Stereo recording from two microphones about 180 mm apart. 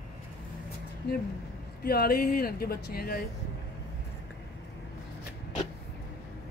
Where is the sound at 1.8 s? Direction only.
55° left (ahead or behind).